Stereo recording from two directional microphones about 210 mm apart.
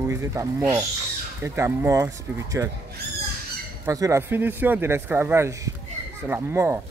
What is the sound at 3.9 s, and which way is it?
Speech, 15° right (ahead or behind).